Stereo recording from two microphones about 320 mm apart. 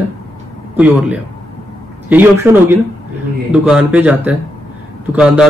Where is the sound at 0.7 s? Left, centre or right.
Centre.